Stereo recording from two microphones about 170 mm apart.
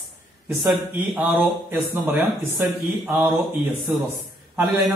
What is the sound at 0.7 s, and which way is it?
Speech, 10° right (ahead or behind).